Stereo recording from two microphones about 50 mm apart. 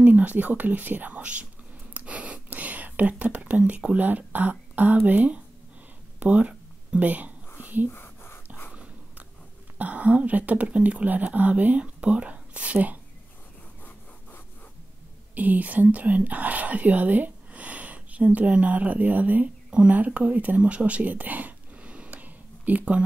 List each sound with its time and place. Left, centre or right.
0.0 s speech: right
2.0 s whispering: right
3.8 s speech: right
6.1 s a sound: right
7.9 s whispering: left
9.8 s speech: right
15.3 s speech: right
19.7 s speech: right
20.2 s a sound: right